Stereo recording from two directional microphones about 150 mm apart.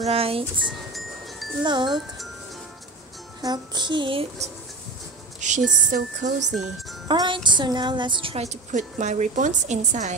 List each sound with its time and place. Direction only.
0.0 s child singing: 40° right (ahead or behind)
0.7 s wind chime: centre (ahead or behind)
1.6 s speech: 30° right (ahead or behind)
3.4 s child singing: 30° right (ahead or behind)
5.4 s speech: 55° right (ahead or behind)
6.5 s speech: centre (ahead or behind)
7.1 s music: 30° right (ahead or behind)
7.4 s a woman's voice: 30° right (ahead or behind); by 10.1 s 50° right (ahead or behind)